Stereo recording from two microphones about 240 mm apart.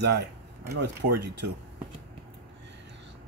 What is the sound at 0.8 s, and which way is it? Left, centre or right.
Speech, right.